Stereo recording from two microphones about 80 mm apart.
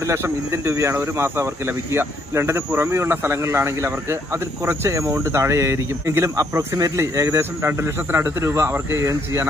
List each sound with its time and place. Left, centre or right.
0.0 s speech: right